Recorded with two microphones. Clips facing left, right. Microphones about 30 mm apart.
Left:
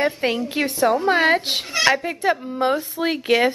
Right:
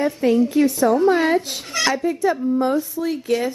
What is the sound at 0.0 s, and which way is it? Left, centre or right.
A woman's voice, left.